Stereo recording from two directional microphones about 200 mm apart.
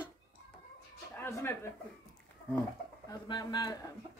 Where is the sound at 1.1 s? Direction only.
10° left (ahead or behind).